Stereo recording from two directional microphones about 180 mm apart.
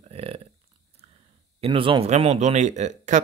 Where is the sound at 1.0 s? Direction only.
35° right (ahead or behind).